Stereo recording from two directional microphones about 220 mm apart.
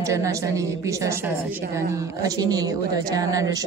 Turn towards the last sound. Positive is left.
turn(degrees=-15)  # may be behind; listen again after turning